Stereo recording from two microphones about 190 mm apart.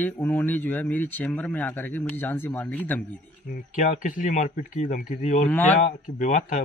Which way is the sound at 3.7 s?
40° left (ahead or behind).